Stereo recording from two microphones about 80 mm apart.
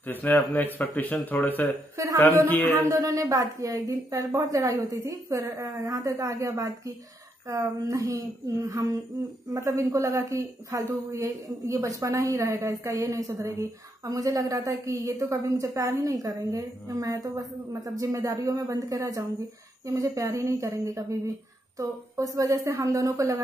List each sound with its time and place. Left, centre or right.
0.0 s speech: left
2.0 s a woman's voice: right